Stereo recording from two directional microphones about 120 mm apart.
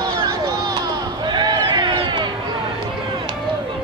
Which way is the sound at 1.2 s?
35° right (ahead or behind).